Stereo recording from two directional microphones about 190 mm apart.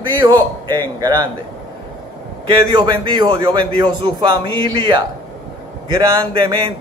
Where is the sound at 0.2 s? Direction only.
20° right (ahead or behind).